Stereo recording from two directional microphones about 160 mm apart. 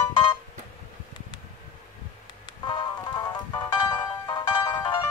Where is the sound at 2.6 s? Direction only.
25° left (ahead or behind).